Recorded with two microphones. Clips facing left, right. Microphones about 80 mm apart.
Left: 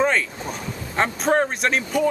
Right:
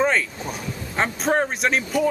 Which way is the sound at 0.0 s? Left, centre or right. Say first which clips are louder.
Even; centre.